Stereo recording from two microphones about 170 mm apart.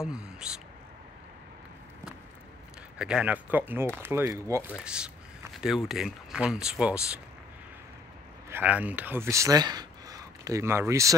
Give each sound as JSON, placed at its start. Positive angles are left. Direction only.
{"t": 0.0, "sound": "speech", "side_deg": -5}
{"t": 3.0, "sound": "speech", "side_deg": -5}
{"t": 4.7, "sound": "speech", "side_deg": -5}
{"t": 8.5, "sound": "speech", "side_deg": -10}